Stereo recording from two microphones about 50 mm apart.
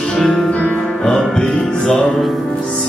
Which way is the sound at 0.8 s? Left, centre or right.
Centre.